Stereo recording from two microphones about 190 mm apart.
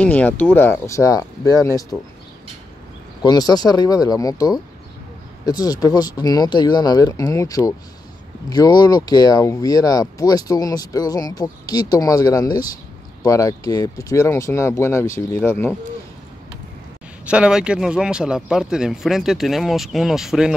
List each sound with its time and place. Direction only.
0.0 s speech: 10° left (ahead or behind)
3.2 s speech: 20° left (ahead or behind)
17.3 s speech: 5° right (ahead or behind)